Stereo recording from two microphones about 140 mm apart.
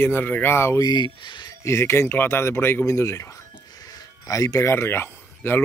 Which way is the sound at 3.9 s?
25° left (ahead or behind).